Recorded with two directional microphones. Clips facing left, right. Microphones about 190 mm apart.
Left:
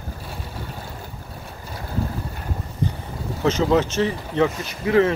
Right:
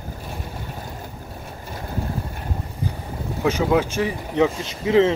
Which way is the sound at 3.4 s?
10° right (ahead or behind).